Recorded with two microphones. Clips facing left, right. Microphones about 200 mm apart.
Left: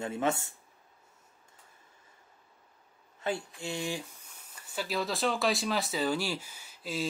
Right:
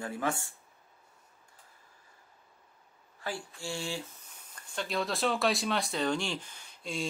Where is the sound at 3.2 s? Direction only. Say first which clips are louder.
Left 5 dB; 20° left (ahead or behind); by 7.1 s 5° left (ahead or behind).